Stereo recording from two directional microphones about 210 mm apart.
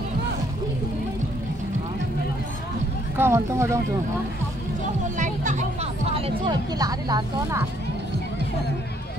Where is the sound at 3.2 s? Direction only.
15° right (ahead or behind).